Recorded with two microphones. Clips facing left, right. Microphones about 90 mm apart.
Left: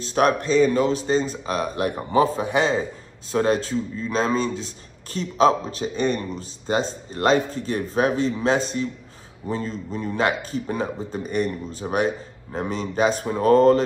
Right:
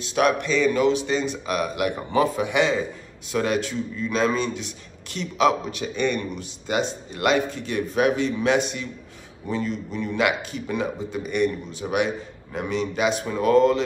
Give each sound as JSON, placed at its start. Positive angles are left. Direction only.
{"t": 0.0, "sound": "speech", "side_deg": 35}